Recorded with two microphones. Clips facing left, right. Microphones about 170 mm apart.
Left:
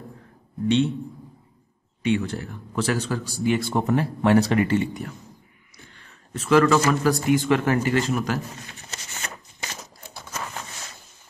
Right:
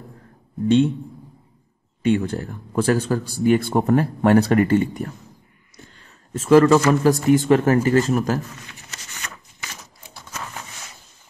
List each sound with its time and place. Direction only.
0.7 s a man's voice: 45° right (ahead or behind)
2.0 s a man's voice: 45° right (ahead or behind)
6.3 s speech: 40° right (ahead or behind)
8.5 s a sound: 30° left (ahead or behind)